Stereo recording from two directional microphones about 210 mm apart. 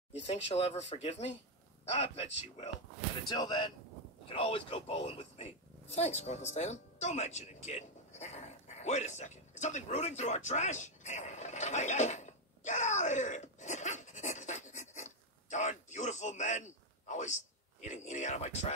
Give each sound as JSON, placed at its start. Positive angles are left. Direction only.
{"t": 0.1, "sound": "a man's voice", "side_deg": 30}
{"t": 3.3, "sound": "a man's voice", "side_deg": 20}